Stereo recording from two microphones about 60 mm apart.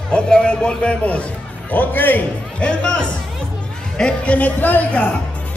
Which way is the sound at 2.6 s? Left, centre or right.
Centre.